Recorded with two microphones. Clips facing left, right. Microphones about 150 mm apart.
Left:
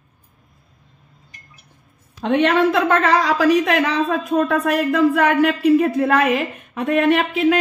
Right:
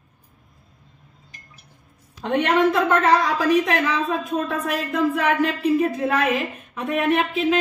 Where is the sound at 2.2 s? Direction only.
75° left (ahead or behind).